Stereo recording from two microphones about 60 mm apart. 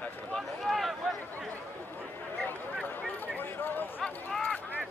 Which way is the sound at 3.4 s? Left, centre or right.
Left.